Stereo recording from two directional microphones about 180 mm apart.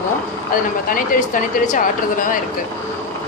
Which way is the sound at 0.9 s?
50° left (ahead or behind).